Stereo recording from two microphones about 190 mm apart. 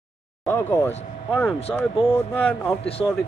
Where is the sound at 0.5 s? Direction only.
10° left (ahead or behind).